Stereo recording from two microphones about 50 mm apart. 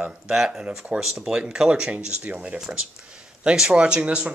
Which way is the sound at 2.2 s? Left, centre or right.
Right.